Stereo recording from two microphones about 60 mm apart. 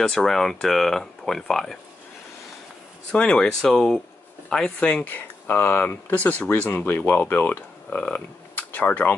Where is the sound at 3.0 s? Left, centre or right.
Centre.